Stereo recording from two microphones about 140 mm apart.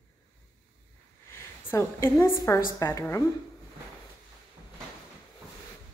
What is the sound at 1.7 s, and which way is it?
A woman's voice, 20° left (ahead or behind).